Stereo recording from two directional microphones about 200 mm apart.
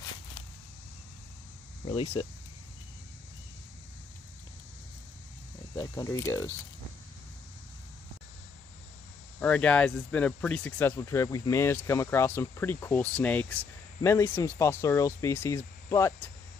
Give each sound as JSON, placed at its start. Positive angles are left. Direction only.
{"t": 1.9, "sound": "speech", "side_deg": 25}
{"t": 5.8, "sound": "speech", "side_deg": 15}
{"t": 9.4, "sound": "speech", "side_deg": 5}